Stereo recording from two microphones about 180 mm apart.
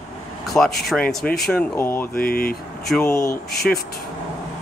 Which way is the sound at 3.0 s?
15° left (ahead or behind).